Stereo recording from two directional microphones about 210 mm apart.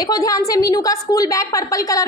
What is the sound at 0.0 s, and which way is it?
A woman's voice, 15° left (ahead or behind).